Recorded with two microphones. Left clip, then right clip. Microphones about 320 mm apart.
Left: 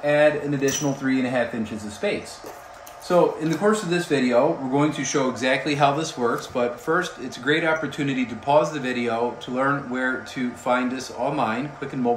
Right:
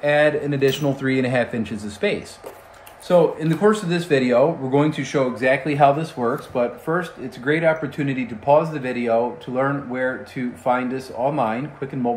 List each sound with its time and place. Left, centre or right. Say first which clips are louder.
0.0 s speech: right 1 dB; right